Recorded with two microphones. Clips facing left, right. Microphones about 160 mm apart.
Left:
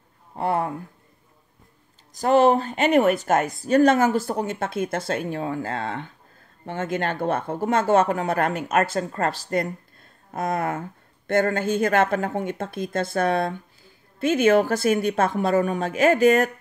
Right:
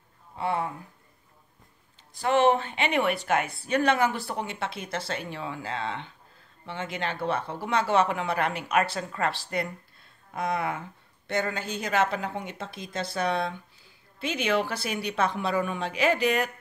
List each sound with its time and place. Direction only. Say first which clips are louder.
0.4 s speech: left 5 dB; 55° left (ahead or behind)
2.1 s speech: left 5 dB; 40° left (ahead or behind)